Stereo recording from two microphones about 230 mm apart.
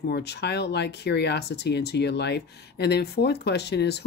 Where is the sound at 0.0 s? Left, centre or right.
Left.